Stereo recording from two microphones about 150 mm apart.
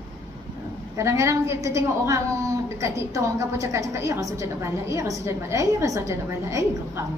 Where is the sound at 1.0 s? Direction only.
20° right (ahead or behind).